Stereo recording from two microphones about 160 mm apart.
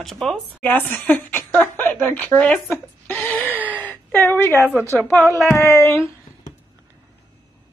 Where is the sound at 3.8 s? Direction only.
10° left (ahead or behind).